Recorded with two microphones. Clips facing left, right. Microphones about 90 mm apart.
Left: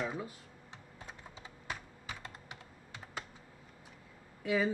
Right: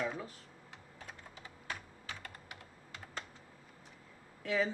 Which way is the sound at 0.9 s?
20° left (ahead or behind).